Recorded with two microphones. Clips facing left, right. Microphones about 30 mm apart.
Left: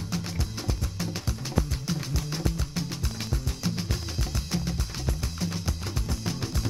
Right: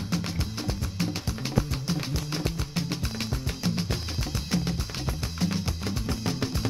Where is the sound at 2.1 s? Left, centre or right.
Centre.